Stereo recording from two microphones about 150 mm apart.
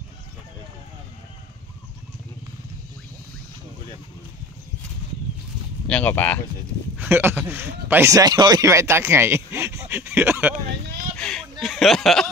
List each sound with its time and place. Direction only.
5.9 s speech: 10° left (ahead or behind)
7.0 s speech: 15° right (ahead or behind)
11.1 s a sound: 5° left (ahead or behind)
11.6 s speech: centre (ahead or behind)